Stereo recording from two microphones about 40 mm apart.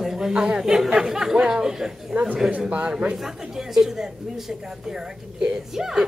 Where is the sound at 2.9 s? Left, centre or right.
Right.